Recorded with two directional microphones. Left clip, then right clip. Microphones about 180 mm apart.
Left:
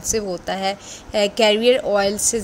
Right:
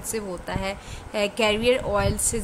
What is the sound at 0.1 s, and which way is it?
A woman's voice, 15° left (ahead or behind).